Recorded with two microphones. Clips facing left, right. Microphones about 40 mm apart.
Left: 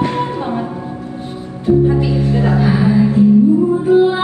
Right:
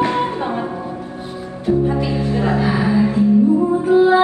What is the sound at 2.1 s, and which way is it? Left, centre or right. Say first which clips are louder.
Music: left 3 dB; right.